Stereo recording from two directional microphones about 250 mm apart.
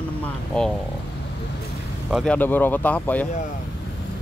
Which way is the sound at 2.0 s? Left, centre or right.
Centre.